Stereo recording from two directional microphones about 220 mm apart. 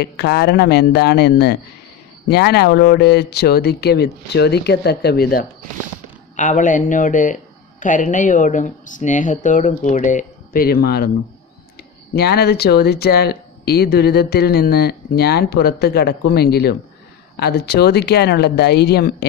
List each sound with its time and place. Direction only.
0.0 s speech: 45° left (ahead or behind)
12.2 s speech: 45° left (ahead or behind)